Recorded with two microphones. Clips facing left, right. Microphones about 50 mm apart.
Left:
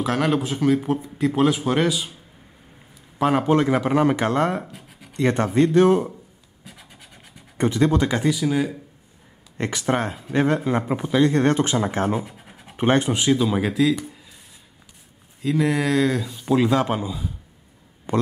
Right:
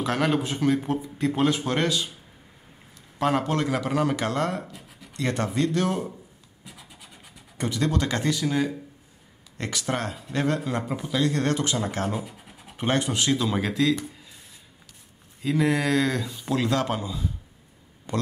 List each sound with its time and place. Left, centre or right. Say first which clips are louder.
0.0 s speech: left 3 dB; centre
3.2 s speech: left 5 dB; centre
6.6 s scratch: left 2 dB; centre
7.5 s speech: left 6 dB; left
8.2 s speech: left 3 dB; centre
9.6 s speech: left 6 dB; left
13.2 s speech: left 4 dB; centre
15.4 s speech: left 2 dB; centre
16.5 s speech: left 5 dB; centre